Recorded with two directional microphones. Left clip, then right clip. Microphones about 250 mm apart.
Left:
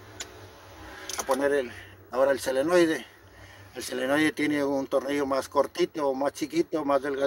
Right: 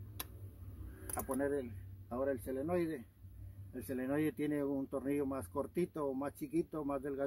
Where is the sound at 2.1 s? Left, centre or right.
Centre.